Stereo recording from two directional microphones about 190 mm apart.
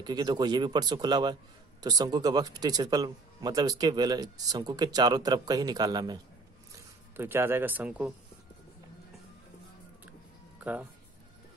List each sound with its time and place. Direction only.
0.0 s a man's voice: 20° right (ahead or behind); by 8.1 s 5° right (ahead or behind)
10.6 s speech: 10° right (ahead or behind)